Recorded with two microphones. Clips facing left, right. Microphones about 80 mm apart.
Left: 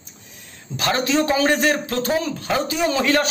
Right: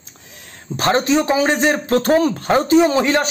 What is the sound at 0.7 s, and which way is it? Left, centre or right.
A man's voice, right.